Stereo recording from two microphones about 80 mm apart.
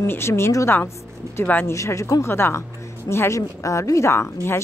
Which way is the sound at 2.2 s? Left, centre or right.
Left.